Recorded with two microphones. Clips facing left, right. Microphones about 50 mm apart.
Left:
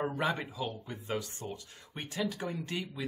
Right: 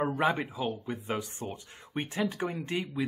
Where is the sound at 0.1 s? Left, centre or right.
Right.